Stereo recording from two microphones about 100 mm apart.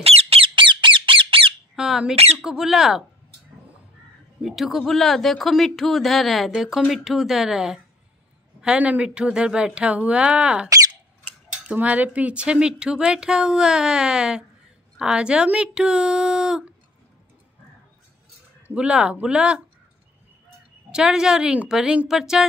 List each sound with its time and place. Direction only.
0.0 s squawk: 90° right; by 1.5 s 60° right (ahead or behind)
1.8 s squawk: 5° right (ahead or behind)
2.4 s speech: 5° right (ahead or behind)
4.4 s speech: centre (ahead or behind)
18.8 s speech: 10° right (ahead or behind)
20.9 s speech: 5° right (ahead or behind)